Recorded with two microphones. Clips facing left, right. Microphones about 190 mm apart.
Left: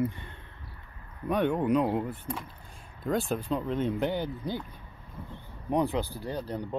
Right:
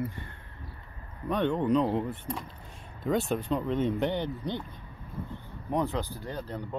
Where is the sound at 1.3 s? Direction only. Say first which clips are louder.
Even; 10° left (ahead or behind).